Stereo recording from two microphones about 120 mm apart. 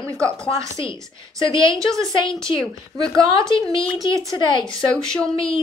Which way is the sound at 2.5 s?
50° left (ahead or behind).